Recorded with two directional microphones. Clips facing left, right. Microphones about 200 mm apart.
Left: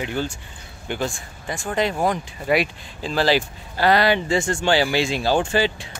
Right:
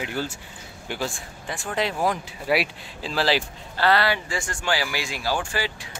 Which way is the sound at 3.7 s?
15° left (ahead or behind).